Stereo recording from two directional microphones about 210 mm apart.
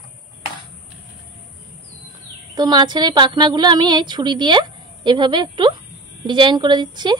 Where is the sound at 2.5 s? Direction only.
20° right (ahead or behind).